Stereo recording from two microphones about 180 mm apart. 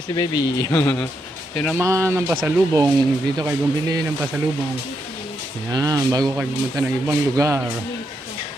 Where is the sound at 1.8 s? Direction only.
15° right (ahead or behind).